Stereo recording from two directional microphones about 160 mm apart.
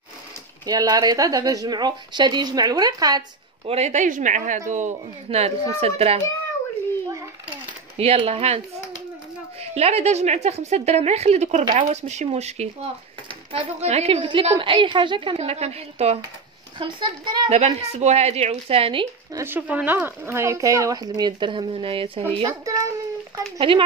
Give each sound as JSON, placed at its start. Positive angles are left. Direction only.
{"t": 0.7, "sound": "speech", "side_deg": -25}
{"t": 3.6, "sound": "a woman's voice", "side_deg": -40}
{"t": 8.0, "sound": "a woman's voice", "side_deg": -40}
{"t": 9.6, "sound": "a woman's voice", "side_deg": -40}
{"t": 16.7, "sound": "speech", "side_deg": -30}
{"t": 17.5, "sound": "a woman's voice", "side_deg": -40}
{"t": 19.3, "sound": "speech", "side_deg": -15}
{"t": 22.5, "sound": "speech", "side_deg": -20}
{"t": 23.7, "sound": "a woman's voice", "side_deg": -35}